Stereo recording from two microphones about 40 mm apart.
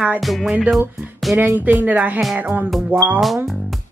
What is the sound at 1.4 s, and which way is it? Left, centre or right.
Speech, right.